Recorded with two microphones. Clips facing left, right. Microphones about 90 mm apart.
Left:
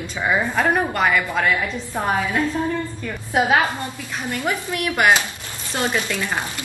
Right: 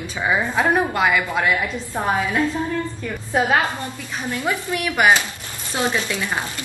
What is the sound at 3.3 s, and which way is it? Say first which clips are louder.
Speech: left 1 dB; 15° left (ahead or behind).